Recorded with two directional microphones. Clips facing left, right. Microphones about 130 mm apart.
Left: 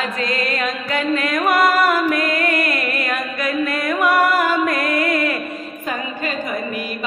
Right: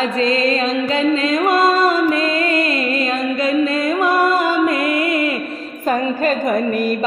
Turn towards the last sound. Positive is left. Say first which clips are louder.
# right 8 dB
turn(degrees=-45)  # may be behind; listen again after turning